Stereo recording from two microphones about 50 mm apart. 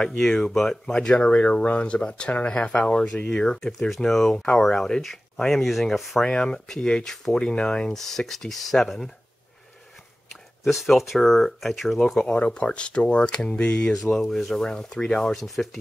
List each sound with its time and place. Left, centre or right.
0.0 s speech: centre
6.2 s speech: centre
7.9 s speech: centre
10.6 s speech: centre
12.2 s speech: left
14.1 s speech: centre